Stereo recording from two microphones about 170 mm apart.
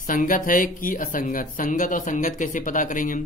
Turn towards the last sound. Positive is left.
turn(degrees=50)  # may be behind; listen again after turning